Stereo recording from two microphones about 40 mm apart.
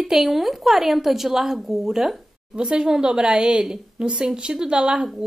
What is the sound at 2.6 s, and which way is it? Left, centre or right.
A woman's voice, right.